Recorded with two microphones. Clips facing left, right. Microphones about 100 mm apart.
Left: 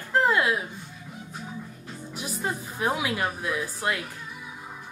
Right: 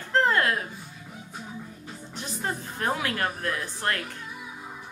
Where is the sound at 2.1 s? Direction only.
5° left (ahead or behind).